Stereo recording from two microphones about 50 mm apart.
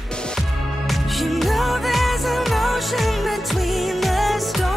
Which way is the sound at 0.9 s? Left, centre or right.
Centre.